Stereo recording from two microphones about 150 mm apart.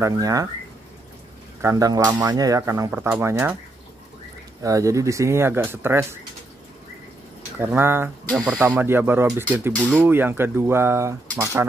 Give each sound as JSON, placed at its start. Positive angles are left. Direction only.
{"t": 0.0, "sound": "speech", "side_deg": -25}
{"t": 1.6, "sound": "speech", "side_deg": -20}
{"t": 4.6, "sound": "speech", "side_deg": -20}
{"t": 7.5, "sound": "speech", "side_deg": -15}